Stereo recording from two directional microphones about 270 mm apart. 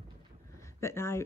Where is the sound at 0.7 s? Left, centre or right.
Centre.